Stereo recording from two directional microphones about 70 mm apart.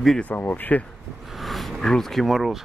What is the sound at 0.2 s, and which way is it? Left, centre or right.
Speech, left.